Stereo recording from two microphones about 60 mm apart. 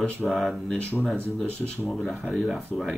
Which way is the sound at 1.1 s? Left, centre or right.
Centre.